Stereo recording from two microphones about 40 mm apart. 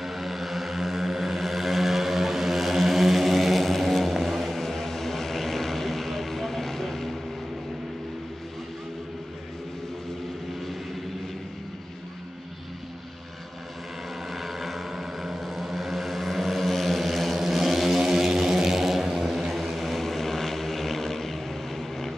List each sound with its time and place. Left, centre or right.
0.0 s vehicle: centre
14.3 s vehicle: centre
18.0 s vehicle: centre